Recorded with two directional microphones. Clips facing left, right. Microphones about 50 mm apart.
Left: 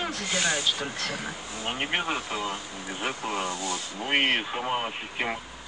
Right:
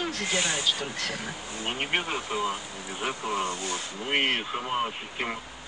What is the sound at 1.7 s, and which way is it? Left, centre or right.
Speech, centre.